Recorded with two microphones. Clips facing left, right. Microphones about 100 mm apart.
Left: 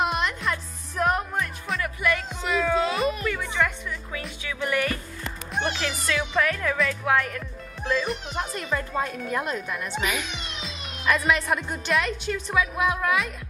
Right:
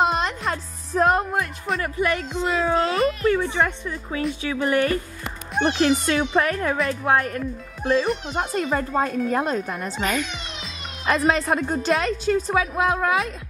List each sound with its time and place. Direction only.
0.0 s music: 30° right (ahead or behind)
1.8 s speech: 40° right (ahead or behind)
9.9 s a child's voice: 5° left (ahead or behind)
11.1 s speech: 35° right (ahead or behind)